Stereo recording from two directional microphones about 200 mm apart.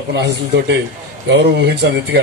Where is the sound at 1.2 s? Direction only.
60° right (ahead or behind).